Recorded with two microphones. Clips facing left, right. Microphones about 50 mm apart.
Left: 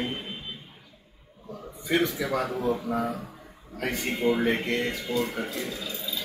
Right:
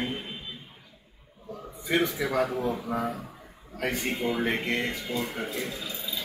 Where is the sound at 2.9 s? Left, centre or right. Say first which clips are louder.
Left 2 dB; centre.